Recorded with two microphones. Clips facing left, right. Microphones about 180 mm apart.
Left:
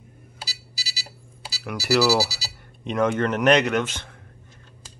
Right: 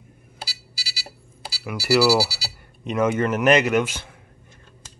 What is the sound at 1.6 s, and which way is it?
Speech, 5° right (ahead or behind).